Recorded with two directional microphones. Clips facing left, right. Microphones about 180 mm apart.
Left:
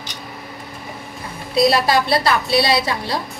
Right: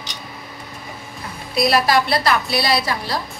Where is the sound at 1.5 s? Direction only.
30° left (ahead or behind).